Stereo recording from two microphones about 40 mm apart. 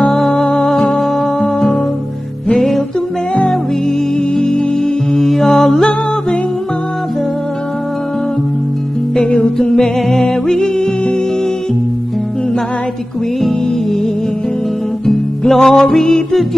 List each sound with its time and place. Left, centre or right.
0.1 s music: centre
4.4 s music: centre
5.1 s music: centre
9.1 s music: centre
9.7 s music: centre
13.4 s music: centre
15.0 s music: centre